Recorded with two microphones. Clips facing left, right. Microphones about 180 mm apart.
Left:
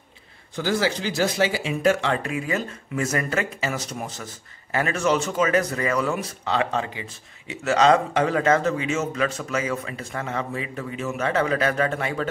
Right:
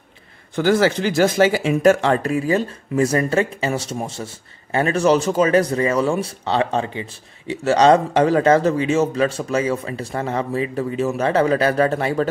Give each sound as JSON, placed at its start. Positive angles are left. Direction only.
{"t": 0.6, "sound": "speech", "side_deg": -60}